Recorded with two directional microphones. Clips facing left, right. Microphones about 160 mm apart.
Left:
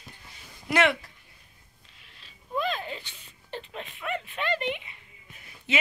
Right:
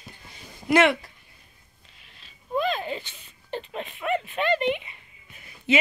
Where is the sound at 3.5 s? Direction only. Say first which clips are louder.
Right 5 dB; 50° right (ahead or behind).